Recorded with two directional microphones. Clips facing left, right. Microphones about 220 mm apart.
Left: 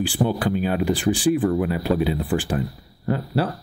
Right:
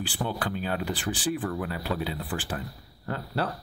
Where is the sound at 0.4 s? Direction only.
15° left (ahead or behind).